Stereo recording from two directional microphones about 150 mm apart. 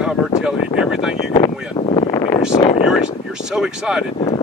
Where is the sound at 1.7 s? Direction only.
40° left (ahead or behind).